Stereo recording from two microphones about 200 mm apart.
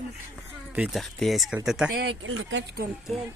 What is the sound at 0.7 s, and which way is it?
Speech, 5° right (ahead or behind).